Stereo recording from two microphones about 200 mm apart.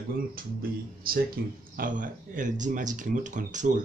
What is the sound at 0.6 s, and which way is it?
Speech, 45° right (ahead or behind).